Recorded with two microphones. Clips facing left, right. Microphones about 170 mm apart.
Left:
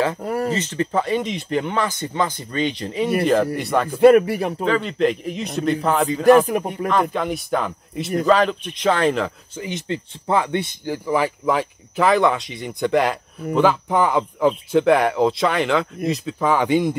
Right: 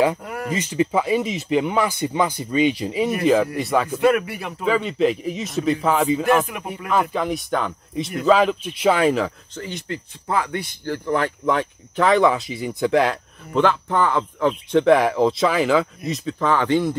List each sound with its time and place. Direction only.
0.2 s a man's voice: 35° left (ahead or behind)
0.5 s speech: 10° right (ahead or behind)
3.9 s a man's voice: 30° left (ahead or behind)
4.6 s speech: 5° right (ahead or behind)
6.2 s a man's voice: 35° left (ahead or behind)
6.9 s speech: 5° right (ahead or behind)
9.6 s speech: 20° left (ahead or behind)
11.1 s speech: 5° left (ahead or behind)